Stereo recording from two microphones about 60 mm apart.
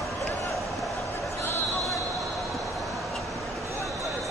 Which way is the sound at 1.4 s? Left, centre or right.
Left.